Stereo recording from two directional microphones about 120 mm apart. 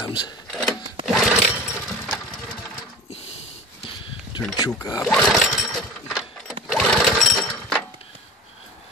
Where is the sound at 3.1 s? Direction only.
60° left (ahead or behind).